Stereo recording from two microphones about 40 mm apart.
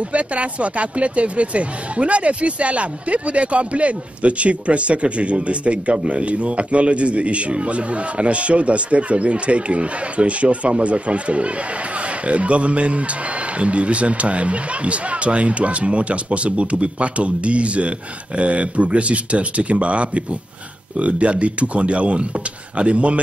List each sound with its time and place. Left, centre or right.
0.1 s speech: right